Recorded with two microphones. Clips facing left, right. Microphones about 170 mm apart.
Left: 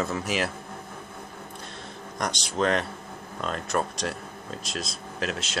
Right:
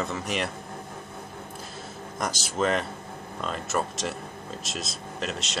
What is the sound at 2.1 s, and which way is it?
Speech, 5° right (ahead or behind).